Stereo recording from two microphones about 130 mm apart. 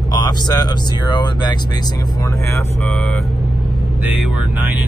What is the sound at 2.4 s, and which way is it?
Speech, 20° left (ahead or behind).